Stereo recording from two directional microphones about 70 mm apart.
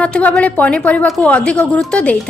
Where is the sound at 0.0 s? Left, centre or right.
Centre.